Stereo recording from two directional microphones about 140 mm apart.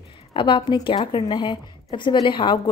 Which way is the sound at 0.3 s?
35° left (ahead or behind).